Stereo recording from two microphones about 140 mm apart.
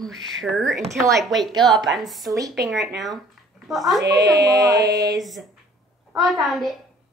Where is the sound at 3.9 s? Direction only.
25° right (ahead or behind).